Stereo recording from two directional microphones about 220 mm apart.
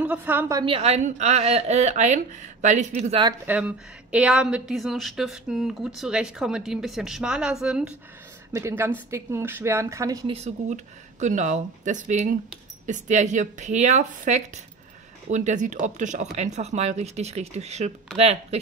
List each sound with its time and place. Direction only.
0.0 s a woman's voice: 5° right (ahead or behind); by 3.0 s 35° right (ahead or behind)
3.1 s speech: 20° right (ahead or behind)
3.4 s a woman's voice: 5° right (ahead or behind)
10.3 s a woman's voice: 30° right (ahead or behind)